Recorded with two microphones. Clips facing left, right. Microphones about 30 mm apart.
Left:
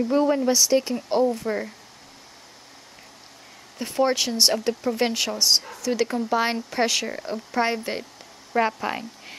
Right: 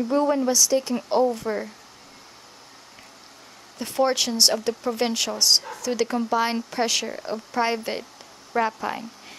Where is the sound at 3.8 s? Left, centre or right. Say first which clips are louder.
Even; centre.